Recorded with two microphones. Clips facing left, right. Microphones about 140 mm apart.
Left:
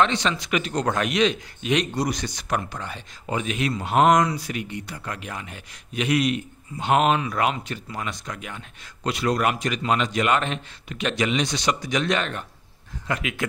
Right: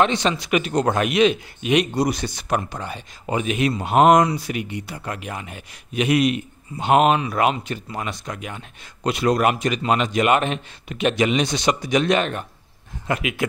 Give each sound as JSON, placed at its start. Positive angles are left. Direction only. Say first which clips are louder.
{"t": 0.0, "sound": "speech", "louder": "right 3 dB", "side_deg": -15}
{"t": 2.2, "sound": "speech", "louder": "right 3 dB", "side_deg": -25}